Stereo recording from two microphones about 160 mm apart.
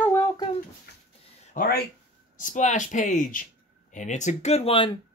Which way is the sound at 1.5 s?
60° left (ahead or behind).